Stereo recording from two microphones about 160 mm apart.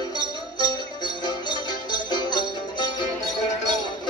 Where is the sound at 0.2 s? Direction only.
25° left (ahead or behind).